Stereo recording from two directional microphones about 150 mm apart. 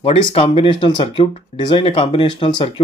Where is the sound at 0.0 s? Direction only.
40° left (ahead or behind).